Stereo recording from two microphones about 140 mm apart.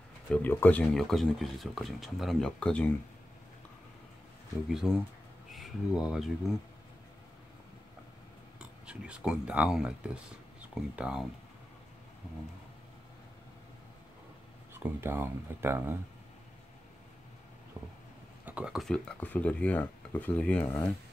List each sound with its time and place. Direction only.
0.3 s speech: 15° left (ahead or behind)
0.8 s speech: centre (ahead or behind)
4.8 s speech: centre (ahead or behind)
8.5 s speech: 10° right (ahead or behind)
14.7 s speech: 15° right (ahead or behind)
17.8 s a sound: 20° right (ahead or behind)
18.4 s speech: 10° right (ahead or behind); by 20.9 s 10° left (ahead or behind)